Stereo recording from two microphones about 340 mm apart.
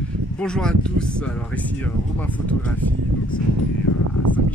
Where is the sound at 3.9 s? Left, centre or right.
Left.